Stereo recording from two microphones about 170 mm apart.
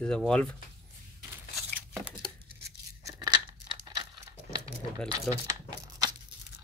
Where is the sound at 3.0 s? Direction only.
25° right (ahead or behind).